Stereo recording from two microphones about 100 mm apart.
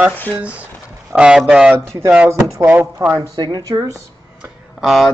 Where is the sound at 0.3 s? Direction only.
15° right (ahead or behind).